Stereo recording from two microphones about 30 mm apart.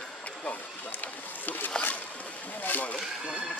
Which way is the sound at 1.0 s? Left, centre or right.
Left.